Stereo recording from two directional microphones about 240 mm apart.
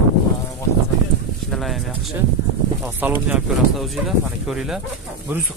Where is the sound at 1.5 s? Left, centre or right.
Centre.